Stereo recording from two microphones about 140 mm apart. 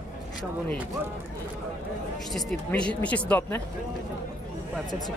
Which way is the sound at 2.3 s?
5° left (ahead or behind).